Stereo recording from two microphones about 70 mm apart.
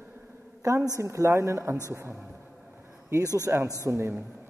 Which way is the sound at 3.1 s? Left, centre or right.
Right.